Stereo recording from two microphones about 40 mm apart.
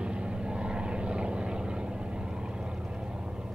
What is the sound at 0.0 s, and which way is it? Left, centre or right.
Vehicle, right.